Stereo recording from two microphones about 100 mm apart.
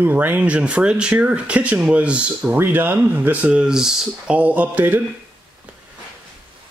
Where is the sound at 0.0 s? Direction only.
20° right (ahead or behind); by 4.4 s 5° right (ahead or behind).